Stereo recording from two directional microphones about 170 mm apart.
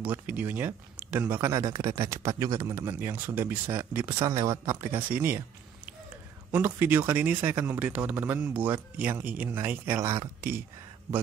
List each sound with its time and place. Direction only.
0.0 s speech: 10° right (ahead or behind)
4.2 s speech: 25° right (ahead or behind)
6.5 s speech: 10° right (ahead or behind)